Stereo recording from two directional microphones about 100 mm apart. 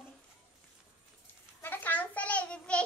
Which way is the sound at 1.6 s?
20° left (ahead or behind).